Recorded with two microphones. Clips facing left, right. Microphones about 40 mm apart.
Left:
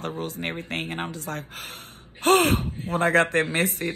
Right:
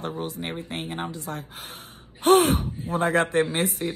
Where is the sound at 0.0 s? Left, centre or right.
Left.